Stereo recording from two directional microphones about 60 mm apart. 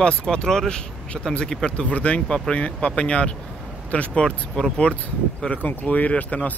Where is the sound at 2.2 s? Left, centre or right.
Centre.